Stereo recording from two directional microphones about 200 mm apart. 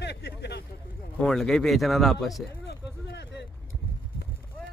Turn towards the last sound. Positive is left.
turn(degrees=60)  # may be behind; listen again after turning